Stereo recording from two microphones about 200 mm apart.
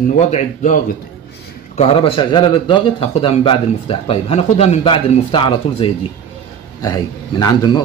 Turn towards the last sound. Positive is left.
turn(degrees=20)  # may be behind; listen again after turning